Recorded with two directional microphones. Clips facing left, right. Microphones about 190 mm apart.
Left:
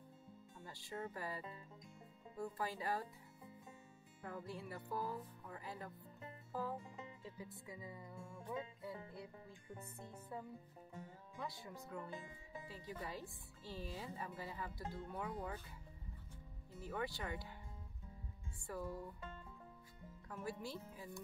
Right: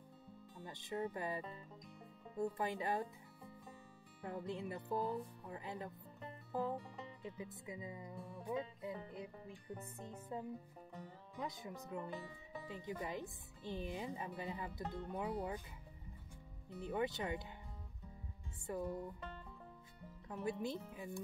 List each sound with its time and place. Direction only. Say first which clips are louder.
0.7 s speech: right 5 dB; 20° right (ahead or behind)
4.2 s speech: right 5 dB; 25° right (ahead or behind)
6.5 s music: right 4 dB; 20° right (ahead or behind)
7.2 s speech: right 4 dB; 20° right (ahead or behind)
10.3 s speech: right 5 dB; 20° right (ahead or behind)
16.8 s speech: right 5 dB; 20° right (ahead or behind)
18.7 s speech: right 4 dB; 20° right (ahead or behind)
20.2 s speech: right 6 dB; 20° right (ahead or behind)